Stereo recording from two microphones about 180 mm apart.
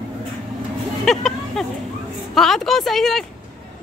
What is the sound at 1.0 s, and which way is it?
Vehicle, centre (ahead or behind).